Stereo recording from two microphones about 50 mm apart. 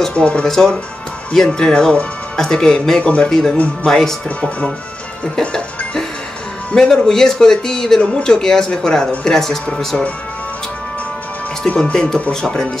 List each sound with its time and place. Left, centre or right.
0.1 s speech: centre
3.0 s speech: left
3.3 s speech: centre
6.7 s speech: centre
11.8 s speech: centre